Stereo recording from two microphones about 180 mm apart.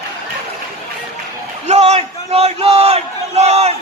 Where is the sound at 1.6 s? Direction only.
35° right (ahead or behind).